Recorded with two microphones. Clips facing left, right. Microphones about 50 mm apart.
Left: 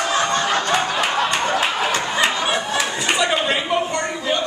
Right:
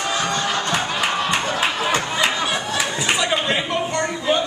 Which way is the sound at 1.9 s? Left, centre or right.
Centre.